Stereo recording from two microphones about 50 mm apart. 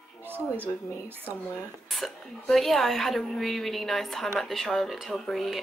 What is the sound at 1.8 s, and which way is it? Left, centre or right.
A woman's voice, centre.